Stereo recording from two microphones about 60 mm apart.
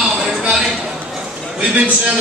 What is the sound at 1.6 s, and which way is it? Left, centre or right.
Speech, centre.